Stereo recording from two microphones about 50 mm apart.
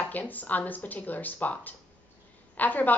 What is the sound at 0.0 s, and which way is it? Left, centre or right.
A woman's voice, left.